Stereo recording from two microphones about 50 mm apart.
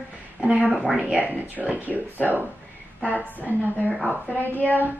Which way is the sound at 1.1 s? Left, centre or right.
Right.